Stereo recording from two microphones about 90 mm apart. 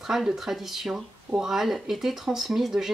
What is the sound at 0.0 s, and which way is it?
Speech, 5° right (ahead or behind).